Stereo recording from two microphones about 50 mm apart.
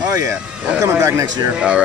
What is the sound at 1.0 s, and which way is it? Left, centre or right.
Speech, right.